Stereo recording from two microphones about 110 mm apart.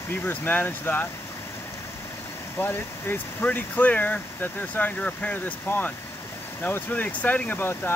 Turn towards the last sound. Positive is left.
turn(degrees=20)  # may be behind; listen again after turning